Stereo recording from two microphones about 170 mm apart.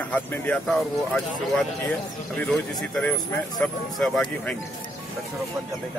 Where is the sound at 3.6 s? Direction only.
Centre (ahead or behind).